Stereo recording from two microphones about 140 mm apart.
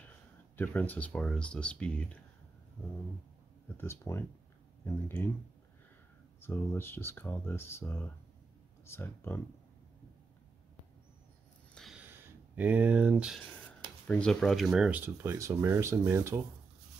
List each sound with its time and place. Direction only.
0.6 s speech: 10° left (ahead or behind)
3.6 s speech: 15° left (ahead or behind)
6.4 s speech: 15° left (ahead or behind)
11.7 s a sound: centre (ahead or behind)
12.0 s a sound: 10° right (ahead or behind)
13.5 s speech: 10° left (ahead or behind); by 16.4 s 20° right (ahead or behind)